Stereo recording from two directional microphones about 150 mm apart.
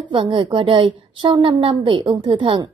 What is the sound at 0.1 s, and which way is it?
A woman's voice, 35° right (ahead or behind).